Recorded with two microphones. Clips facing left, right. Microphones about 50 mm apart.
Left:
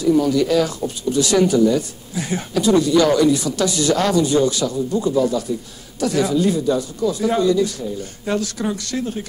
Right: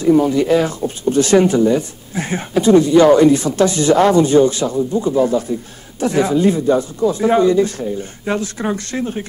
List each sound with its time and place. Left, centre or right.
0.0 s speech: right